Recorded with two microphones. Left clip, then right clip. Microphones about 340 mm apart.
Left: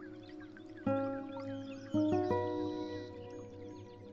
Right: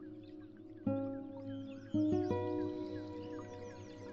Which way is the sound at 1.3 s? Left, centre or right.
Centre.